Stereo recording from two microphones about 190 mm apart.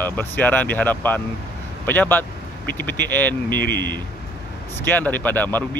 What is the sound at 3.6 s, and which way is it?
Speech, 70° right (ahead or behind).